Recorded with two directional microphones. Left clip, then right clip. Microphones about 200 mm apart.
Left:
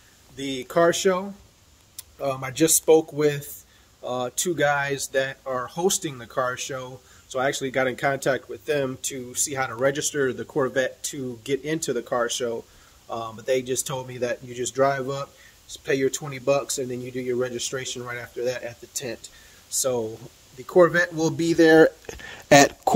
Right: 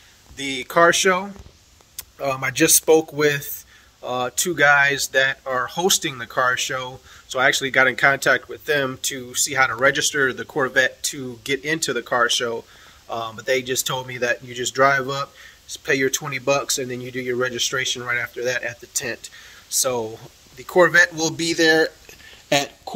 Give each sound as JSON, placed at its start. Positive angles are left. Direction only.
{"t": 0.4, "sound": "speech", "side_deg": 20}
{"t": 20.6, "sound": "speech", "side_deg": 30}